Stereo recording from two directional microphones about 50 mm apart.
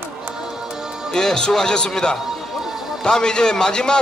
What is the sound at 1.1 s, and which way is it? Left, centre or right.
Speech, centre.